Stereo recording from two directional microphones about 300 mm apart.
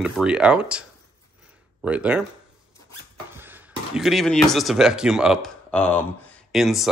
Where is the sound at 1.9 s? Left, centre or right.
Centre.